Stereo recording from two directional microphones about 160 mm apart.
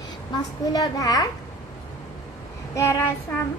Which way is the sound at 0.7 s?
25° left (ahead or behind).